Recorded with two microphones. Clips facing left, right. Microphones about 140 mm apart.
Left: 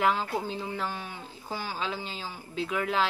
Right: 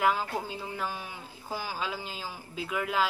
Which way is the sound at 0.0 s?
10° right (ahead or behind).